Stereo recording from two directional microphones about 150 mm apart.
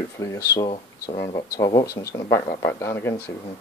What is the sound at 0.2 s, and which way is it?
Speech, 20° left (ahead or behind).